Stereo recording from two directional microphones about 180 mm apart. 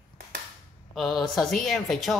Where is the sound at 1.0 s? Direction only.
Centre (ahead or behind).